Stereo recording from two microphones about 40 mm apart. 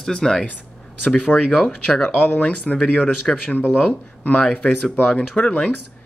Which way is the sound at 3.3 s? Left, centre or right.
Centre.